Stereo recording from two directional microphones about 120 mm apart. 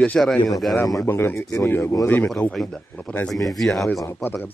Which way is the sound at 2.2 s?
5° left (ahead or behind).